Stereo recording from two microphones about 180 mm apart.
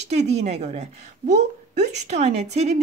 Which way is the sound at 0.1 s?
35° right (ahead or behind).